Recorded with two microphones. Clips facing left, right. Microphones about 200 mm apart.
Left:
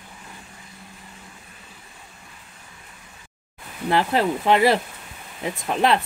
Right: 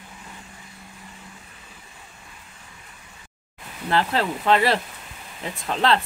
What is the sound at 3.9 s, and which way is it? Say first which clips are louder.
Speech: left 2 dB; 20° left (ahead or behind).